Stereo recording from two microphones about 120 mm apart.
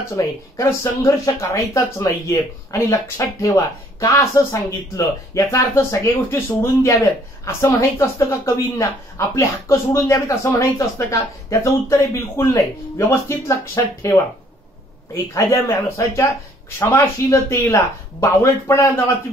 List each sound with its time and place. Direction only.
0.1 s speech: 25° left (ahead or behind)
15.3 s speech: 25° left (ahead or behind)